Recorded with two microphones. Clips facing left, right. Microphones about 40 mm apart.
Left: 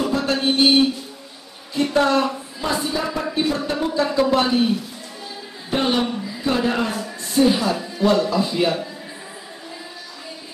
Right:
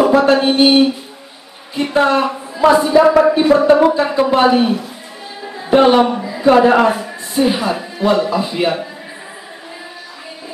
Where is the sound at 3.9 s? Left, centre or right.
Right.